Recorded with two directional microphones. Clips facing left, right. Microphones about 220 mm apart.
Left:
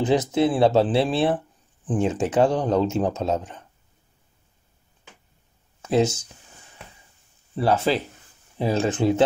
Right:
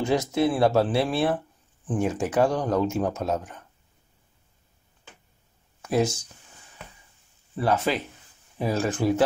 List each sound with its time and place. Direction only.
0.0 s speech: 20° left (ahead or behind)
5.8 s speech: 25° left (ahead or behind)
7.5 s speech: 30° left (ahead or behind)